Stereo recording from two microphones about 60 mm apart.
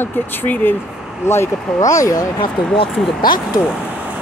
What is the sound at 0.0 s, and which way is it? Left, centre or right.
Speech, left.